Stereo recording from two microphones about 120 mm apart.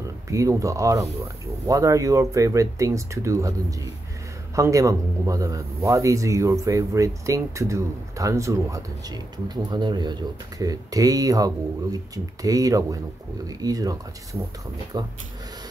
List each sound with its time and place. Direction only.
0.3 s a man's voice: 25° right (ahead or behind)
4.6 s a man's voice: 25° right (ahead or behind)